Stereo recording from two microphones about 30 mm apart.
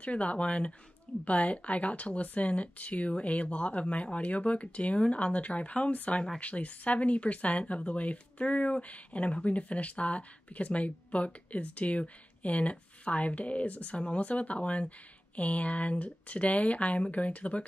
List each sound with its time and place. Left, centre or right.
0.0 s speech: left
0.5 s speech: left
1.2 s speech: left